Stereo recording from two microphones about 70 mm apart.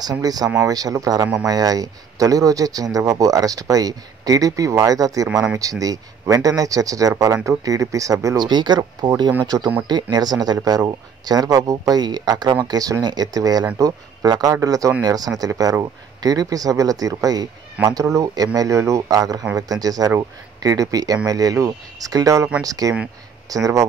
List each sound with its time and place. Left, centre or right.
0.0 s speech: right
5.3 s speech: centre
5.6 s speech: right
8.4 s speech: right
10.1 s speech: right
12.6 s speech: right
19.1 s speech: right